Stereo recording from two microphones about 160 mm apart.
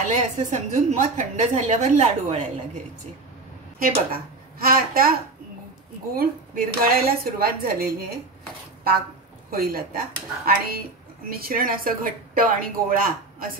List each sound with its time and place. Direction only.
0.0 s a woman's voice: 45° right (ahead or behind)
4.6 s speech: 65° right (ahead or behind)
6.1 s speech: 65° right (ahead or behind)
9.5 s a woman's voice: 70° right (ahead or behind)